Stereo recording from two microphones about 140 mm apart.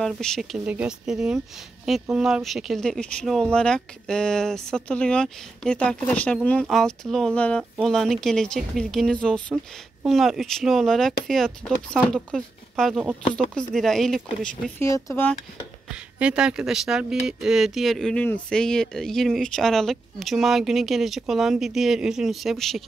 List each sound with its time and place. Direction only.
0.0 s speech: 5° left (ahead or behind)
14.8 s speech: 20° left (ahead or behind)
15.9 s speech: 5° right (ahead or behind)